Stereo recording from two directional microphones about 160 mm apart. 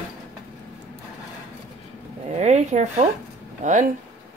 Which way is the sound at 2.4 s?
45° right (ahead or behind).